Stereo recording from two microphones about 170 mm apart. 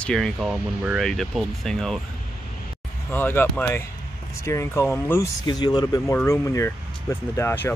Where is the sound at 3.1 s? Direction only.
10° left (ahead or behind).